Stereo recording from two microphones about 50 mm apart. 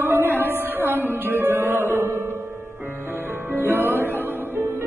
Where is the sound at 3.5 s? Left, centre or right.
Right.